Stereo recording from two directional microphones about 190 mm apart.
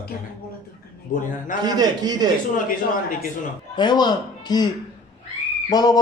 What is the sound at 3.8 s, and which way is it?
Speech, 20° left (ahead or behind).